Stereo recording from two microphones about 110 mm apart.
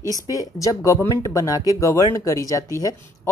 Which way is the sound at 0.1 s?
35° left (ahead or behind).